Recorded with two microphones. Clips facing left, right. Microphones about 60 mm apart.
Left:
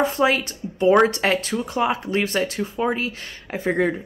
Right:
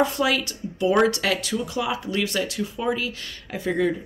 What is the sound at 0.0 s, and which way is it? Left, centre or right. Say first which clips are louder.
Speech: left 2 dB; left.